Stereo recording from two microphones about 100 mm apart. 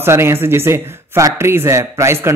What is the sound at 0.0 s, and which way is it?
A man's voice, 25° right (ahead or behind).